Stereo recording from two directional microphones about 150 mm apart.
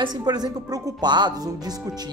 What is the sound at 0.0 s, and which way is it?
Speech, 25° right (ahead or behind).